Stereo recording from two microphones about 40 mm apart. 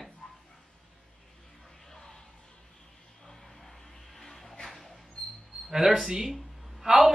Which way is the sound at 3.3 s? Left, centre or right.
Centre.